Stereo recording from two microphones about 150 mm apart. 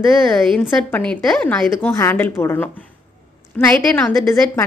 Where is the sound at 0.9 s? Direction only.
10° left (ahead or behind).